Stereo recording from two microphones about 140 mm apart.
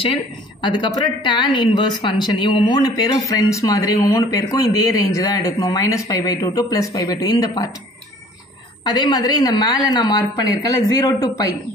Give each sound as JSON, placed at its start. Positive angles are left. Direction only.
{"t": 0.0, "sound": "speech", "side_deg": 35}
{"t": 8.8, "sound": "speech", "side_deg": 30}